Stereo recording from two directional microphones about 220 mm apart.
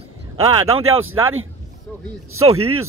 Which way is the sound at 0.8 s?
70° right (ahead or behind).